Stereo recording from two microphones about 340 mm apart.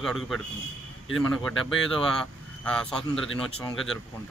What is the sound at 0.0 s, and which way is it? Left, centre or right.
A man's voice, centre.